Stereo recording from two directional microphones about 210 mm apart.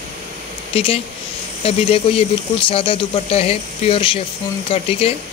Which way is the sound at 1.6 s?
25° left (ahead or behind).